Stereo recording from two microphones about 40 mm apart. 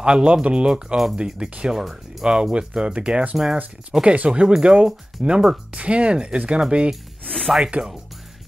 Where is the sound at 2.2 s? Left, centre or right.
Right.